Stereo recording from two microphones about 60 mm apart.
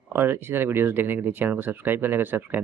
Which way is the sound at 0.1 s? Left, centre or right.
Right.